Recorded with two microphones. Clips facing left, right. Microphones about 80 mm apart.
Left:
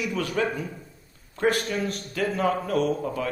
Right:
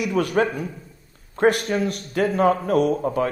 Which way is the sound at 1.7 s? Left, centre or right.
Right.